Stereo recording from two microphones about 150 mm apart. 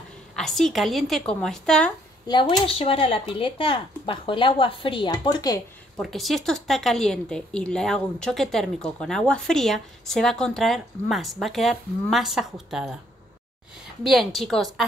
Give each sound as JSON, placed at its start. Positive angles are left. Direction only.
{"t": 0.4, "sound": "a woman's voice", "side_deg": 0}
{"t": 2.2, "sound": "speech", "side_deg": 30}
{"t": 5.9, "sound": "a woman's voice", "side_deg": 0}
{"t": 14.0, "sound": "a woman's voice", "side_deg": 0}